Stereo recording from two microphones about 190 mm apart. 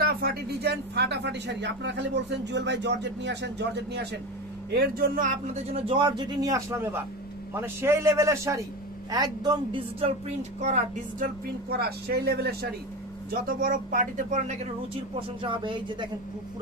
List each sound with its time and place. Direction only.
0.0 s speech: 55° right (ahead or behind)
4.7 s a man's voice: 50° right (ahead or behind)
11.7 s speech: 55° right (ahead or behind)
15.4 s speech: 25° right (ahead or behind)